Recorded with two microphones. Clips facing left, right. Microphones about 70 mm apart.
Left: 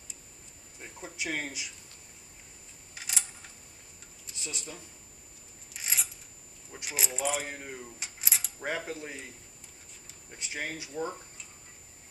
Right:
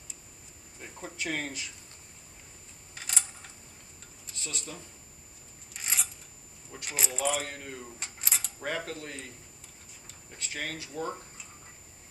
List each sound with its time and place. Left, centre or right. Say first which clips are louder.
0.7 s speech: right 1 dB; centre
2.9 s a sound: right 1 dB; centre
4.4 s speech: right 1 dB; centre
5.7 s filing: right 1 dB; centre
6.7 s speech: even; centre
10.3 s speech: even; centre